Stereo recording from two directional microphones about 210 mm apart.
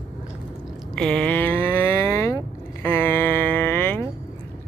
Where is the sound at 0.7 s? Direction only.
5° left (ahead or behind).